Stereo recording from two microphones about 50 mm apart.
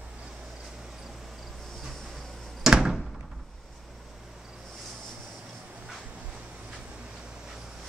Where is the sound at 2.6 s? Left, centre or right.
Centre.